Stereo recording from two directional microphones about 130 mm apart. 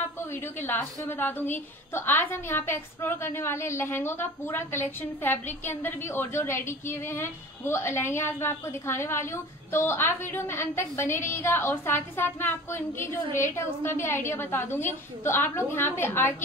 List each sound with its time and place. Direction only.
0.3 s a woman's voice: 15° left (ahead or behind)